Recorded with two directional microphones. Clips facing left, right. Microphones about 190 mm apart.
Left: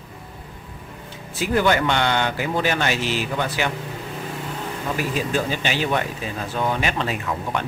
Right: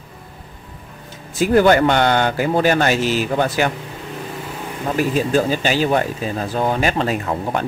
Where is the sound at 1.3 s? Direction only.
45° right (ahead or behind).